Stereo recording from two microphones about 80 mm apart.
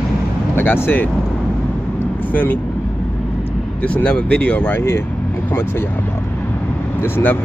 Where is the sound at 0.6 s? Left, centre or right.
Left.